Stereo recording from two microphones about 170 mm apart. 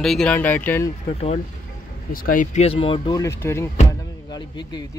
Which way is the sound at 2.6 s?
35° left (ahead or behind).